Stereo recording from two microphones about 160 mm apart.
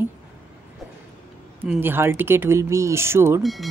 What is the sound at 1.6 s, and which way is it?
Speech, 10° right (ahead or behind).